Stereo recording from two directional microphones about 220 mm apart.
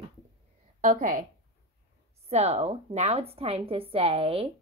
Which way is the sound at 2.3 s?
30° right (ahead or behind).